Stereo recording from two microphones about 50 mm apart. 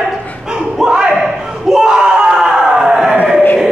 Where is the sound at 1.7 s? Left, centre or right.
Centre.